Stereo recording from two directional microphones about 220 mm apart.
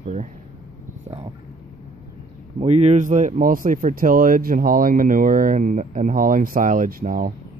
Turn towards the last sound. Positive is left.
turn(degrees=-40)  # may be behind; listen again after turning